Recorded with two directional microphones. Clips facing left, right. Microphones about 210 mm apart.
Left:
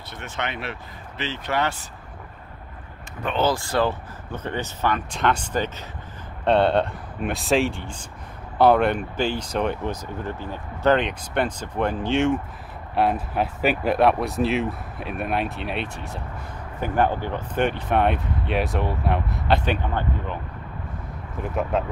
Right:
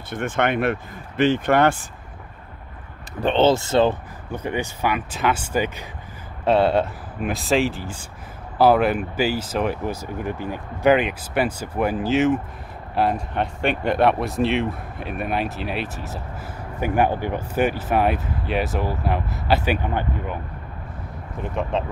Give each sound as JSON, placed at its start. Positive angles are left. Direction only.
{"t": 0.1, "sound": "speech", "side_deg": -50}
{"t": 3.2, "sound": "speech", "side_deg": -30}
{"t": 4.3, "sound": "speech", "side_deg": -10}
{"t": 21.4, "sound": "speech", "side_deg": 5}